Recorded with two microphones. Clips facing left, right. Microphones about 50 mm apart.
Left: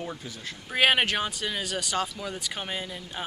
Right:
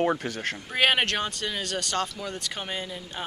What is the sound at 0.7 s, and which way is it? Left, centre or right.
Speech, centre.